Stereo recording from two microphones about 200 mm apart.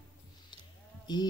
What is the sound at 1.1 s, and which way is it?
Speech, 20° left (ahead or behind).